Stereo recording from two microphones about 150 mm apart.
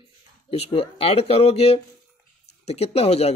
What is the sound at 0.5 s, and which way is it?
Speech, 40° left (ahead or behind).